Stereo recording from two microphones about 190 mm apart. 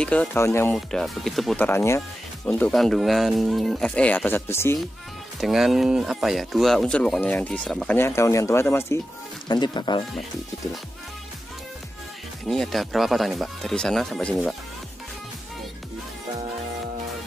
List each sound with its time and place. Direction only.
0.0 s speech: 5° left (ahead or behind)
0.7 s speech: centre (ahead or behind)
1.7 s speech: 15° left (ahead or behind)
5.4 s speech: centre (ahead or behind); by 10.0 s 25° left (ahead or behind)
12.4 s speech: centre (ahead or behind)